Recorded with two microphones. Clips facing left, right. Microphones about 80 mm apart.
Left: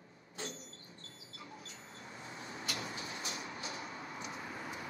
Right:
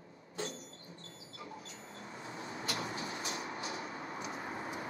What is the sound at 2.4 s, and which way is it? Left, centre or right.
Vehicle, right.